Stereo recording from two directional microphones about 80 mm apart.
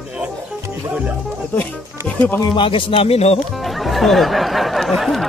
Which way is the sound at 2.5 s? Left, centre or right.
Left.